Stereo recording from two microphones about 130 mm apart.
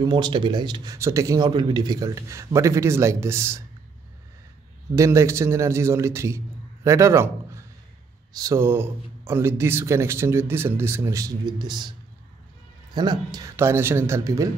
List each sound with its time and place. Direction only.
0.0 s speech: 35° right (ahead or behind)
0.9 s speech: 20° right (ahead or behind)
1.5 s speech: 35° right (ahead or behind)
4.9 s a man's voice: 25° right (ahead or behind)
12.9 s speech: 35° right (ahead or behind)
13.6 s speech: 20° right (ahead or behind)